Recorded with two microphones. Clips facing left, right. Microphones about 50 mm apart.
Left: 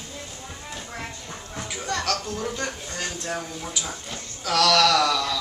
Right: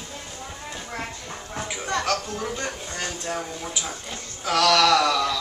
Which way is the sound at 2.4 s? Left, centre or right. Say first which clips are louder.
Even; centre.